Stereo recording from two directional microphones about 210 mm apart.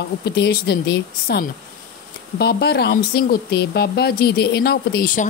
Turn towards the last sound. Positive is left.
turn(degrees=40)  # may be behind; listen again after turning